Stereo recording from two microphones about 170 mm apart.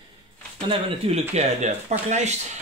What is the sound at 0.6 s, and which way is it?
Speech, 35° right (ahead or behind).